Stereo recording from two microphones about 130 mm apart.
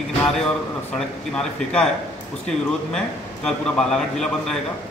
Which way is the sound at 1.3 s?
5° left (ahead or behind).